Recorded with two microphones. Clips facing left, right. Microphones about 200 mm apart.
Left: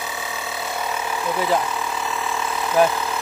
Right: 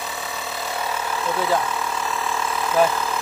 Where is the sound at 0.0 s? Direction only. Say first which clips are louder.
Left 1 dB; centre (ahead or behind).